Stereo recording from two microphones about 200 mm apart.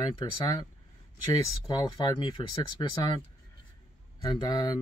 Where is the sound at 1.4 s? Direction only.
20° left (ahead or behind).